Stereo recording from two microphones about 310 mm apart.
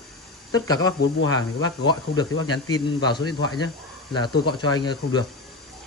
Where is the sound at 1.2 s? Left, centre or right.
Left.